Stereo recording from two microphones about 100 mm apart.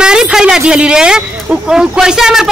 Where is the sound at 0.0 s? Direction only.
5° right (ahead or behind).